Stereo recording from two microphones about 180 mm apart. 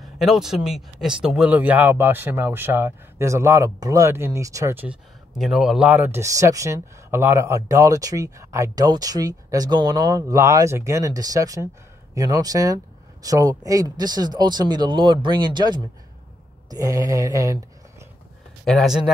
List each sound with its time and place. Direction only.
0.0 s speech: centre (ahead or behind); by 18.0 s 20° right (ahead or behind)
18.7 s speech: centre (ahead or behind)